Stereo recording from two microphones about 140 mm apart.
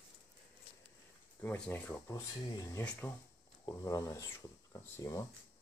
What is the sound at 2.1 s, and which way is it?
Speech, 25° left (ahead or behind).